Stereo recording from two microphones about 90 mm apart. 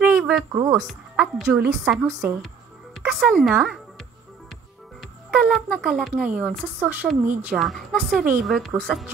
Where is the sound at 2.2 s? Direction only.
25° right (ahead or behind).